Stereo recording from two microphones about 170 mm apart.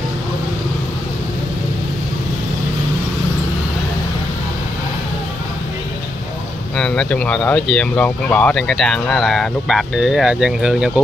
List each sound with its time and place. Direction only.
6.8 s speech: 5° left (ahead or behind)